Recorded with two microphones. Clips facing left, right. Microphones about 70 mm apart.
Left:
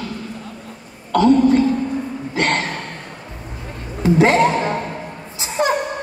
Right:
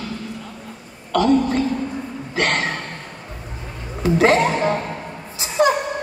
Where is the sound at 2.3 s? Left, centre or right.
Left.